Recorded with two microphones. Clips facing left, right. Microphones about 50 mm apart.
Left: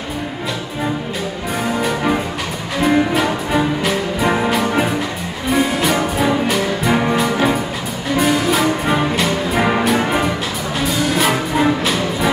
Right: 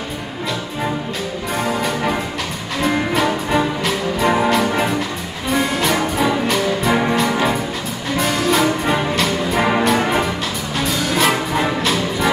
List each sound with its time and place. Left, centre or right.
1.6 s music: centre